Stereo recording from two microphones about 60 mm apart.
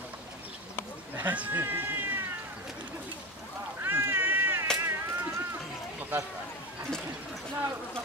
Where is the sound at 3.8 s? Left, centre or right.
Right.